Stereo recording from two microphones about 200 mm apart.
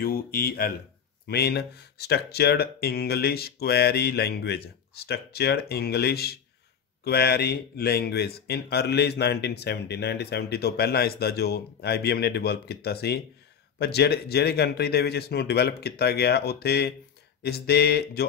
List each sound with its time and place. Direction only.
0.0 s speech: 50° left (ahead or behind)